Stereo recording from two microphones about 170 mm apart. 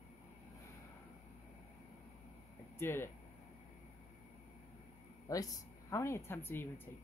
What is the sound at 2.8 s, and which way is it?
Speech, 15° left (ahead or behind).